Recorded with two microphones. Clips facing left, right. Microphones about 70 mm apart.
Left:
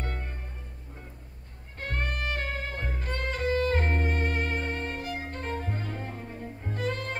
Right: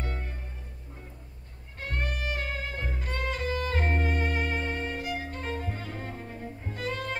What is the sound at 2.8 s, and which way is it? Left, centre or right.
Music, left.